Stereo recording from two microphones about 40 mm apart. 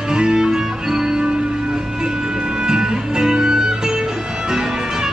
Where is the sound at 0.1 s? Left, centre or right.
Centre.